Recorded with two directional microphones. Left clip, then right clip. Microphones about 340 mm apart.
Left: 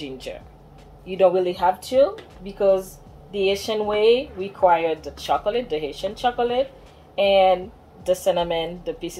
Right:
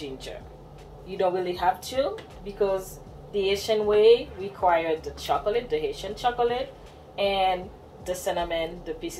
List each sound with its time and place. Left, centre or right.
1.0 s speech: left
3.3 s speech: left